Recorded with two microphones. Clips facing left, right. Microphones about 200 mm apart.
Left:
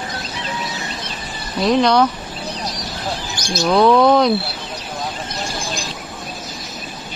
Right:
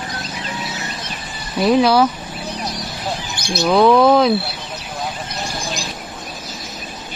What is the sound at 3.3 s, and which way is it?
Bird, 60° right (ahead or behind).